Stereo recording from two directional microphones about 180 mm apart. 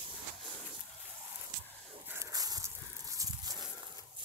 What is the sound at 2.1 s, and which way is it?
Dog, 15° right (ahead or behind).